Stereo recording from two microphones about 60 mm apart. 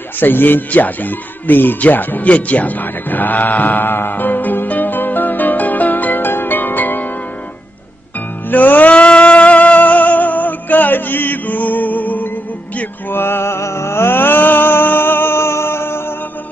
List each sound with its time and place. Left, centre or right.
0.2 s speech: left
8.5 s music: left
13.1 s music: left